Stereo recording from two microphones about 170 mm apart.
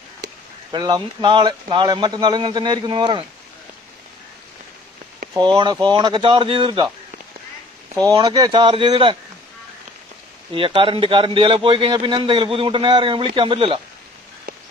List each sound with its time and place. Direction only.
0.7 s a man's voice: 25° right (ahead or behind)
5.3 s a man's voice: 25° right (ahead or behind)
8.0 s a man's voice: 20° right (ahead or behind)
10.5 s a man's voice: 30° right (ahead or behind)